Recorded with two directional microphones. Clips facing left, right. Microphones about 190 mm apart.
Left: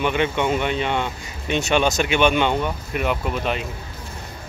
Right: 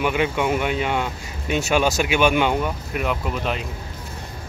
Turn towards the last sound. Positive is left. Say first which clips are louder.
# left 1 dB
turn(degrees=0)  # may be behind; listen again after turning